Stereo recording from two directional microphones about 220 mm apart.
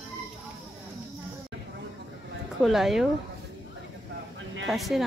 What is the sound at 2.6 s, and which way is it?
Speech, centre (ahead or behind).